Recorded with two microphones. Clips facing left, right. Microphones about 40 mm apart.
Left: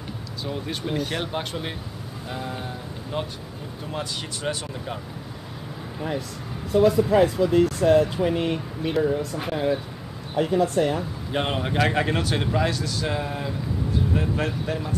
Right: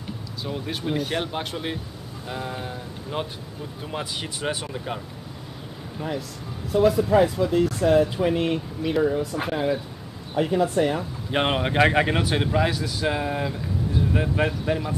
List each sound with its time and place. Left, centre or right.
0.4 s speech: centre
5.9 s speech: centre
11.3 s speech: right